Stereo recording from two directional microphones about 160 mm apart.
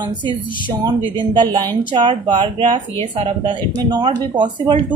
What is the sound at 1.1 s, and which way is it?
Speech, 30° right (ahead or behind).